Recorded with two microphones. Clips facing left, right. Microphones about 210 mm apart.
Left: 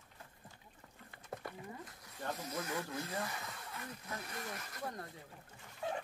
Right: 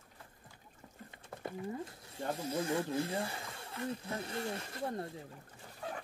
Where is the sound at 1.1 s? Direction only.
25° right (ahead or behind).